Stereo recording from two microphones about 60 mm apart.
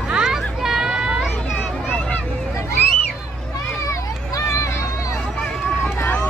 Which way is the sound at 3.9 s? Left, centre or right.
Left.